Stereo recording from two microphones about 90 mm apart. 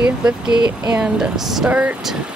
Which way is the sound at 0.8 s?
10° right (ahead or behind).